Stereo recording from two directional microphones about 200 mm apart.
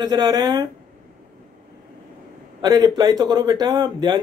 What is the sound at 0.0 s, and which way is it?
Speech, 20° right (ahead or behind).